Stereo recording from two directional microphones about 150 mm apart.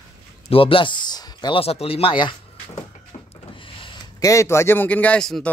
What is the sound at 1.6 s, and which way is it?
Speech, 40° left (ahead or behind).